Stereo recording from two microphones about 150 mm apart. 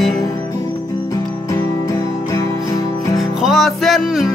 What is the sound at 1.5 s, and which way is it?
Music, 20° left (ahead or behind).